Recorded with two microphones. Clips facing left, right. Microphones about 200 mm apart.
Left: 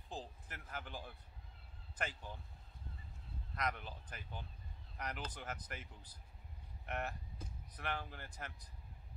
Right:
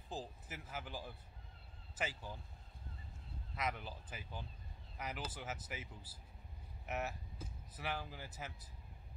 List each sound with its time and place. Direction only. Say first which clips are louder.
0.1 s a sound: right 2 dB; 5° right (ahead or behind)
2.0 s speech: right 1 dB; 5° right (ahead or behind)
3.5 s speech: even; 5° right (ahead or behind)